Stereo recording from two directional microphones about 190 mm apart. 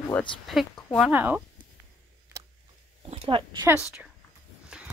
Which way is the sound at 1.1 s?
10° right (ahead or behind).